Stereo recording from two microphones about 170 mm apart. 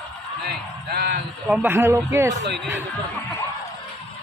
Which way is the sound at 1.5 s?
10° right (ahead or behind).